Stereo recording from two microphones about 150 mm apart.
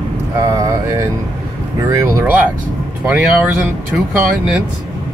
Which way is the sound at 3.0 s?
5° right (ahead or behind).